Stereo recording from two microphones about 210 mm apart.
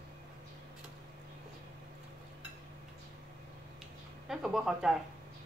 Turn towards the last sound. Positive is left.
turn(degrees=-5)  # may be behind; listen again after turning